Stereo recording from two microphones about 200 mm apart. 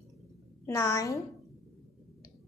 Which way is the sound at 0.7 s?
15° left (ahead or behind).